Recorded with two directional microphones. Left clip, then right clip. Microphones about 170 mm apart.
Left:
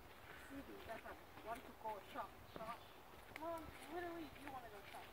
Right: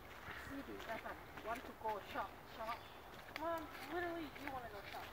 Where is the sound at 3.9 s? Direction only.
Centre (ahead or behind).